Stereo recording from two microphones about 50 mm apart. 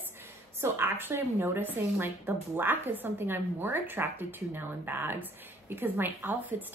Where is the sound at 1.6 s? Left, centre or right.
Right.